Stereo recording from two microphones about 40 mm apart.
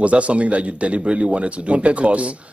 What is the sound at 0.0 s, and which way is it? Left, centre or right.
A man's voice, right.